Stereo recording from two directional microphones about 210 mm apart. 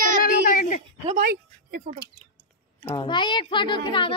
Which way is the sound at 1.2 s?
50° right (ahead or behind).